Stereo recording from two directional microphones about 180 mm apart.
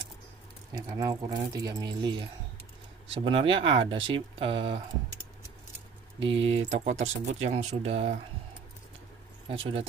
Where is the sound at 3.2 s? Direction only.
30° right (ahead or behind).